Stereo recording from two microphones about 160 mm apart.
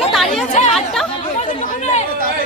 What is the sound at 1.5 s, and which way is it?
Chatter, 55° left (ahead or behind).